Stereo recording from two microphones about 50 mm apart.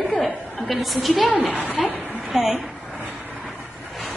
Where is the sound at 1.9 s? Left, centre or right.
Right.